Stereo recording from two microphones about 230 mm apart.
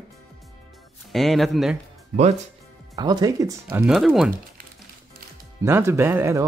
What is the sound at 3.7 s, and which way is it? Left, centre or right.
Speech, centre.